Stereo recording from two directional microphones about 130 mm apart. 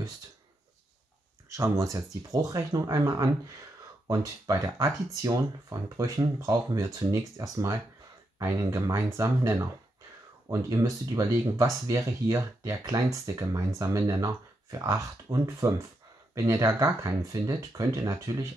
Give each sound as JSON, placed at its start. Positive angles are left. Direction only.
{"t": 1.5, "sound": "speech", "side_deg": -25}